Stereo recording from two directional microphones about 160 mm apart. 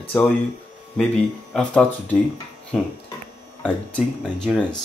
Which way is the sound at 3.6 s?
5° left (ahead or behind).